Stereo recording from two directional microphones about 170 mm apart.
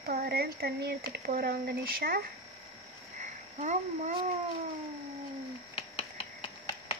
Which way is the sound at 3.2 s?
45° right (ahead or behind).